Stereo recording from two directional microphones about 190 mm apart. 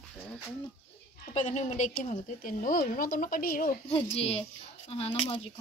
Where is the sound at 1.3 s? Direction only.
40° left (ahead or behind).